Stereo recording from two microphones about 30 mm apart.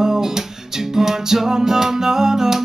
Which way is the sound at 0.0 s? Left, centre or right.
Centre.